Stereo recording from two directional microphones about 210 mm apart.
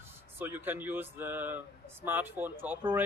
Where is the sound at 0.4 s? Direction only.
10° right (ahead or behind).